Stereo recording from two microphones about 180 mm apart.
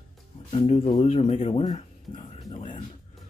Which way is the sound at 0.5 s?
30° left (ahead or behind).